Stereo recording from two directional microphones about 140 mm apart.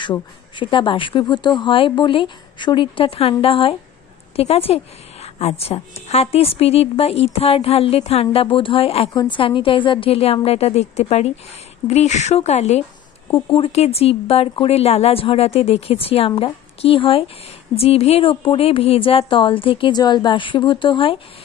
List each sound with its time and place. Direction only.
0.6 s a woman's voice: 35° left (ahead or behind)
9.1 s a woman's voice: 30° left (ahead or behind); by 12.8 s 55° left (ahead or behind)
13.3 s a woman's voice: 40° left (ahead or behind)